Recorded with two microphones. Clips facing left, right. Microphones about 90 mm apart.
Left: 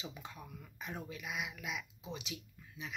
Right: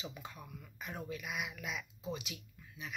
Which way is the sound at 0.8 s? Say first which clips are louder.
Right 1 dB; 25° left (ahead or behind).